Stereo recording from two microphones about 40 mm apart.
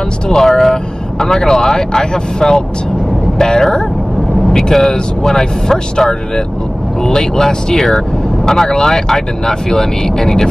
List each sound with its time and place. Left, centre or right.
0.3 s speech: centre